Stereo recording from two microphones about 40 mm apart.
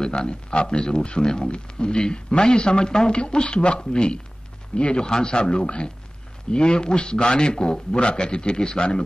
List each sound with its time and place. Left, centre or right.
0.0 s speech: left